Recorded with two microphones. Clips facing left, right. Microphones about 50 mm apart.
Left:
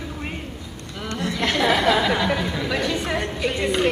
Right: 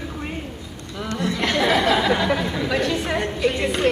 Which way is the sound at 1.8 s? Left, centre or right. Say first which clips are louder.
Even; centre.